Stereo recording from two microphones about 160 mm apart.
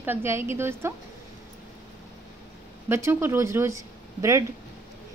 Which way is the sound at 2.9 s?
15° right (ahead or behind).